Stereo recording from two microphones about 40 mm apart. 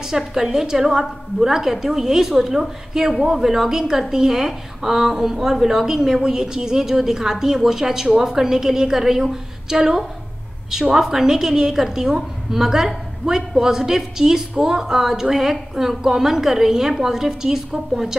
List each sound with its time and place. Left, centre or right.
0.3 s a woman's voice: centre